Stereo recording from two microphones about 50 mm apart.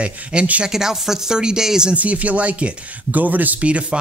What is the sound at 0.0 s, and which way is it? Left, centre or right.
Speech, right.